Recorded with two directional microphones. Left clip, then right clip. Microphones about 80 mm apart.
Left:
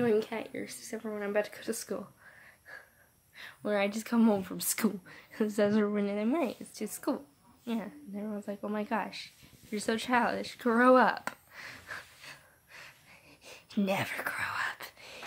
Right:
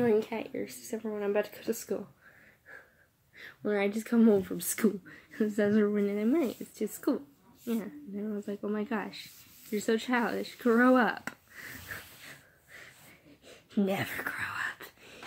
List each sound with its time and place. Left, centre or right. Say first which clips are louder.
0.0 s speech: right 1 dB; left
0.5 s speech: right 3 dB; centre; by 2.0 s left
3.3 s speech: even; left
4.8 s speech: right 4 dB; left
8.6 s a sound: left 2 dB; left
13.5 s whispering: right 1 dB; left